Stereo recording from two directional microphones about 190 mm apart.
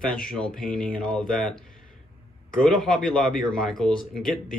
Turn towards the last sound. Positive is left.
turn(degrees=0)  # may be behind; listen again after turning